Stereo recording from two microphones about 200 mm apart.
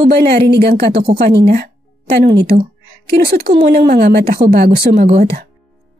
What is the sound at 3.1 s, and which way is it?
Speech, 55° right (ahead or behind).